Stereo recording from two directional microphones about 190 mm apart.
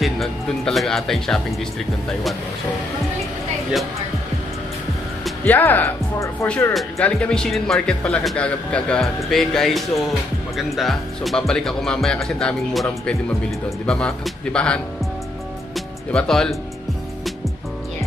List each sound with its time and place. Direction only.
0.0 s speech: centre (ahead or behind)
5.2 s speech: 10° left (ahead or behind)
13.8 s speech: 5° left (ahead or behind)
15.7 s music: 5° left (ahead or behind)